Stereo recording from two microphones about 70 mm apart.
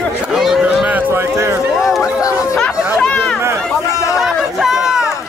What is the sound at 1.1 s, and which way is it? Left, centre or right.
Speech, right.